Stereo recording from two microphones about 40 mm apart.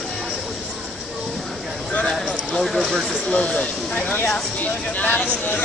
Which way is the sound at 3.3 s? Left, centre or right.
Left.